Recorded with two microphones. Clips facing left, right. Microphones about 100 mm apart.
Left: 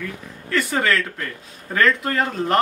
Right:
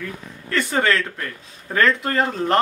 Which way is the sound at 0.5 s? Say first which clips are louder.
Right 1 dB; centre (ahead or behind).